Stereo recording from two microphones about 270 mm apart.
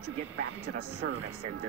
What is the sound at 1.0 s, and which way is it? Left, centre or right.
Speech, right.